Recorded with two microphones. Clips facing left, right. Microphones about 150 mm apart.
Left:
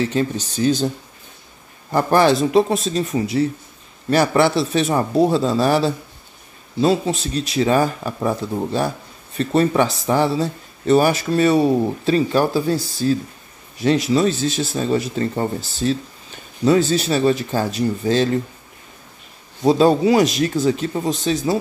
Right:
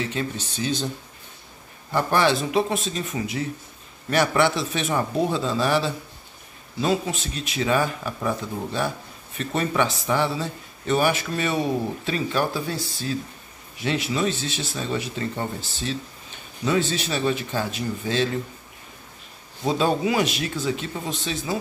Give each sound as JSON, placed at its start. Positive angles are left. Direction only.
{"t": 0.1, "sound": "speech", "side_deg": 40}
{"t": 1.9, "sound": "speech", "side_deg": 40}
{"t": 19.6, "sound": "speech", "side_deg": 35}